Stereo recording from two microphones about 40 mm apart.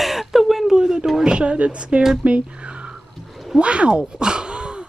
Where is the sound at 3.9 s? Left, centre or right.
Right.